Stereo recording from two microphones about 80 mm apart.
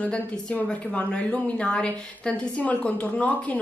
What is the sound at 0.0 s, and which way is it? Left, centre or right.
Speech, centre.